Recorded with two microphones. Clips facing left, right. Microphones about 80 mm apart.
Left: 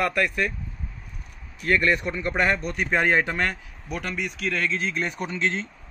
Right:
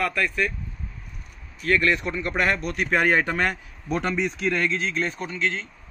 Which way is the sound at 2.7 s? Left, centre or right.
Centre.